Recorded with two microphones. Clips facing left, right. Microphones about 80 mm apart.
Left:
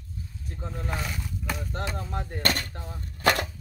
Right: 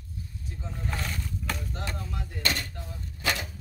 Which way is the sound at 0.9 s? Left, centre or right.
Centre.